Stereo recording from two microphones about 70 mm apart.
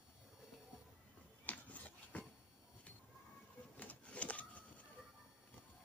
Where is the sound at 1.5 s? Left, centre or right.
Left.